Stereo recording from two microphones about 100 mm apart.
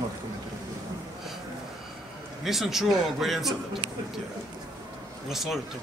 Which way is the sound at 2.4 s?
Centre (ahead or behind).